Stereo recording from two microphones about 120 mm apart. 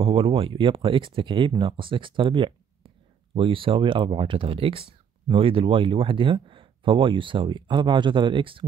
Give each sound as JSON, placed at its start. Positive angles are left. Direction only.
{"t": 0.0, "sound": "speech", "side_deg": -50}